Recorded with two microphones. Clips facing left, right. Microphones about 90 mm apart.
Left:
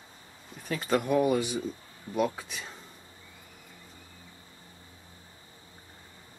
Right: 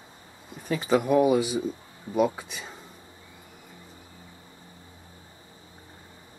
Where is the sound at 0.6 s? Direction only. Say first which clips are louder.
Right 4 dB; 5° right (ahead or behind).